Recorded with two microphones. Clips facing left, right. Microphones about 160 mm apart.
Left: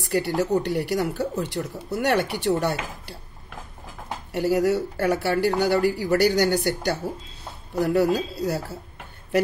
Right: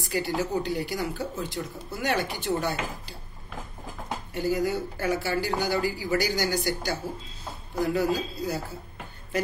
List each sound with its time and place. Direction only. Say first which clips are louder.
0.0 s speech: left 5 dB; 70° left (ahead or behind)
4.3 s speech: left 6 dB; 75° left (ahead or behind)